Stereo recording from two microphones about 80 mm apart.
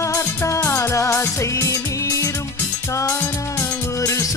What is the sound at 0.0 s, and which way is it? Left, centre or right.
Music, left.